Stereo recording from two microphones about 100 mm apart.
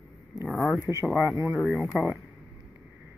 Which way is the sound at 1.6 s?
Centre (ahead or behind).